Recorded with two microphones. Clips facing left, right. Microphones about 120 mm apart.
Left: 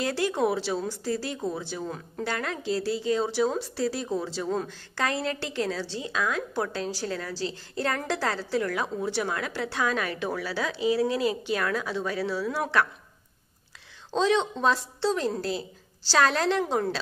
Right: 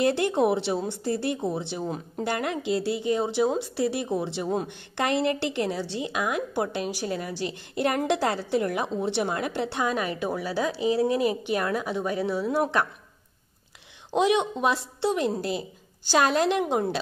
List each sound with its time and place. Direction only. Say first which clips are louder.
0.0 s a woman's voice: right 4 dB; 20° right (ahead or behind)
14.1 s a woman's voice: right 2 dB; 15° right (ahead or behind)